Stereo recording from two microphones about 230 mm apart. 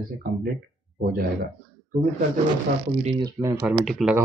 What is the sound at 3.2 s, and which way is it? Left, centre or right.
Speech, centre.